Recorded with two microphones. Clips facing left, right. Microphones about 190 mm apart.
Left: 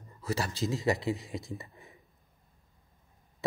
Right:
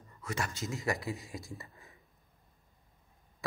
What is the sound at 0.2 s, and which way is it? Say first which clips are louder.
Speech: left 5 dB; 30° left (ahead or behind).